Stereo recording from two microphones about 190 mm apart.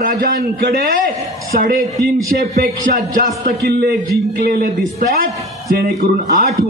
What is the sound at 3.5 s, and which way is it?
A man's voice, 55° right (ahead or behind).